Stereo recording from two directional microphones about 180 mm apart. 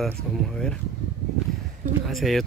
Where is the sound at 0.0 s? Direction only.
5° left (ahead or behind).